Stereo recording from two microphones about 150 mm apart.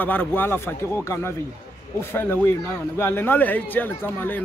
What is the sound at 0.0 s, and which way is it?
Speech, 10° left (ahead or behind).